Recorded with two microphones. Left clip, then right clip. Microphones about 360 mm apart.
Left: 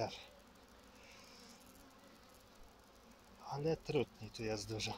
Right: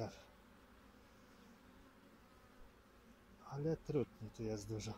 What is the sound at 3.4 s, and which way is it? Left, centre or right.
Speech, left.